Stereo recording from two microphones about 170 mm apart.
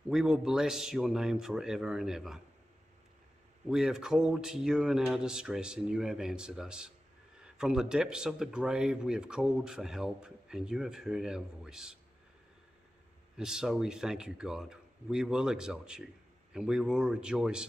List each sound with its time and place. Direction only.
0.1 s a man's voice: centre (ahead or behind)
3.6 s a man's voice: centre (ahead or behind)
13.4 s a man's voice: 5° right (ahead or behind)